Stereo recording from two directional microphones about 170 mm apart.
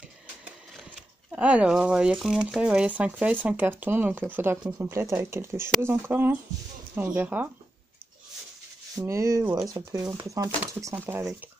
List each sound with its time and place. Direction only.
1.3 s speech: 5° right (ahead or behind)
8.9 s speech: 20° right (ahead or behind)